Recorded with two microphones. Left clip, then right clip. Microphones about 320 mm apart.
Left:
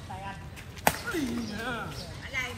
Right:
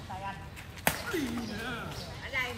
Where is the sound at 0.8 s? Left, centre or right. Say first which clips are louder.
Left 3 dB; centre.